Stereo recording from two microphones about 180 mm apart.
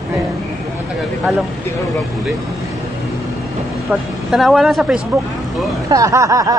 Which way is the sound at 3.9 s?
Centre (ahead or behind).